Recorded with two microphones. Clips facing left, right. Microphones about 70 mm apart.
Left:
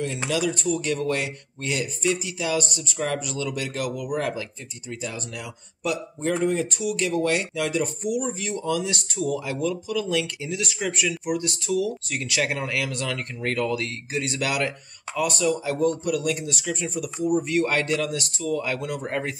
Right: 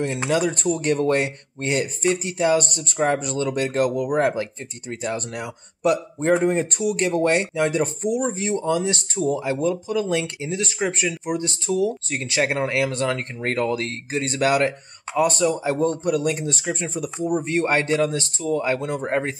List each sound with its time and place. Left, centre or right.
0.3 s speech: right